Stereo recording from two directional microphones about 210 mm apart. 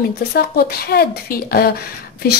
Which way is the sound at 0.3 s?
45° left (ahead or behind).